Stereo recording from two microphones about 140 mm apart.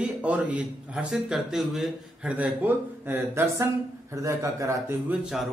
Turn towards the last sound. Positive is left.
turn(degrees=-5)  # may be behind; listen again after turning